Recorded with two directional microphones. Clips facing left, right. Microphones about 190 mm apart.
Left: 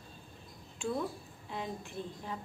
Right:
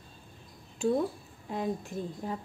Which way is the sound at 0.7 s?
40° right (ahead or behind).